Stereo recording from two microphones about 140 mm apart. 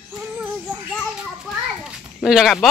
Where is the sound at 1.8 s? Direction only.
5° right (ahead or behind).